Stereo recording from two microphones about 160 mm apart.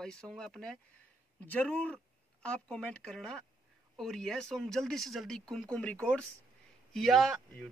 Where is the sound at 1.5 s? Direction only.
10° left (ahead or behind).